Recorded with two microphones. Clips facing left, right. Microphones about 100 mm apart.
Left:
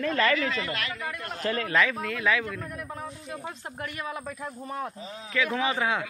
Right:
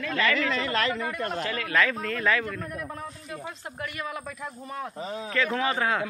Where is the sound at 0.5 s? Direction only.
40° right (ahead or behind).